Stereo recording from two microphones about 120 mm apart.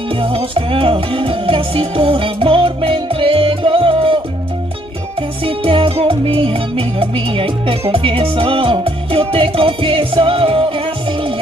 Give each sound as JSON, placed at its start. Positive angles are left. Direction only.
{"t": 0.1, "sound": "music", "side_deg": -50}
{"t": 5.4, "sound": "music", "side_deg": -50}